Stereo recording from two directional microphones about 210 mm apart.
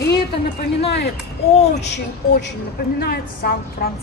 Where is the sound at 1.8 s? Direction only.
55° left (ahead or behind).